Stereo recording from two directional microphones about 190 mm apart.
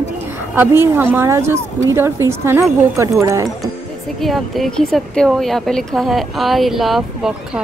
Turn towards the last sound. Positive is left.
turn(degrees=-5)  # may be behind; listen again after turning